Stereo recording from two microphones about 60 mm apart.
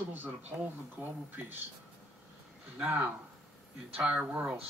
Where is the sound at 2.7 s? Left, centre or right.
Right.